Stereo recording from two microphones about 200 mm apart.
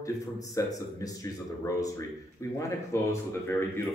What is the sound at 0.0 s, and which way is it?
Speech, 15° left (ahead or behind).